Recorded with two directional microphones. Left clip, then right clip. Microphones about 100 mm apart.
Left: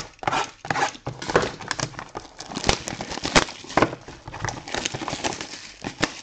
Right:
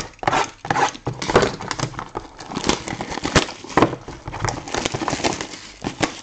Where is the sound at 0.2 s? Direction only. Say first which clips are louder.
Right 5 dB; 5° right (ahead or behind).